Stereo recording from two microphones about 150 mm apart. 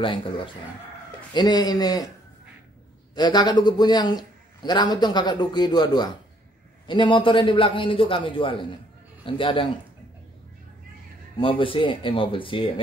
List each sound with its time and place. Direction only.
0.0 s a man's voice: 35° left (ahead or behind)
1.3 s a man's voice: 30° left (ahead or behind)
3.2 s a man's voice: 30° left (ahead or behind)
11.3 s a man's voice: 35° left (ahead or behind)